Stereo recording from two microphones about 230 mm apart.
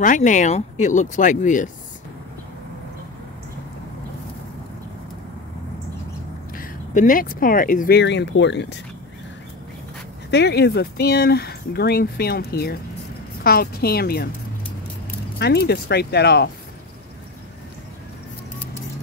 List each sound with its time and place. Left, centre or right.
0.0 s speech: left
6.5 s speech: left
10.3 s speech: left
15.3 s speech: left